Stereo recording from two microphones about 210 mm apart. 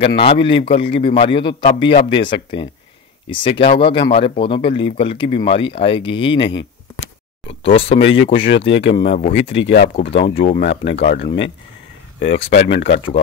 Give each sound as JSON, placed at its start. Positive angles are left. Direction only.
{"t": 0.0, "sound": "speech", "side_deg": 25}
{"t": 7.0, "sound": "a sound", "side_deg": 25}
{"t": 8.0, "sound": "speech", "side_deg": 65}
{"t": 9.9, "sound": "speech", "side_deg": 25}
{"t": 10.3, "sound": "speech", "side_deg": 40}
{"t": 12.7, "sound": "speech", "side_deg": 55}